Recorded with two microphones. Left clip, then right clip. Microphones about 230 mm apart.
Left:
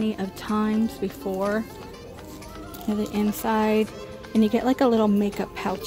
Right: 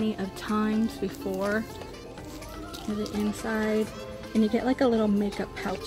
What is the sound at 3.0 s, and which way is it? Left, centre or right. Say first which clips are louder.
Speech: left 4 dB; centre.